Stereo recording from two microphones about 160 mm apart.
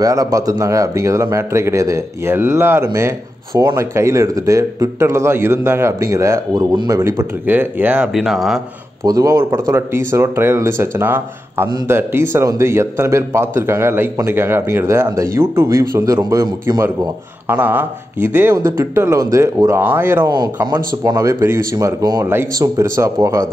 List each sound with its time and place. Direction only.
0.0 s a man's voice: 20° right (ahead or behind); by 8.5 s centre (ahead or behind)
9.0 s a man's voice: 20° right (ahead or behind)
20.2 s speech: 25° right (ahead or behind)